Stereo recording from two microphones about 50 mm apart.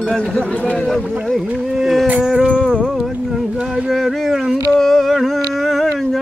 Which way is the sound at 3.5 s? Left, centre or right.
Centre.